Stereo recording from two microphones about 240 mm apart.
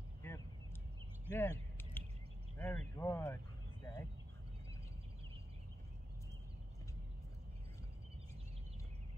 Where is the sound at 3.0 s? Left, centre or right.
Centre.